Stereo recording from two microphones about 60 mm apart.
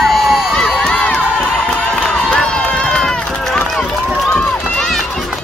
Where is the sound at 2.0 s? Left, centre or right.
Centre.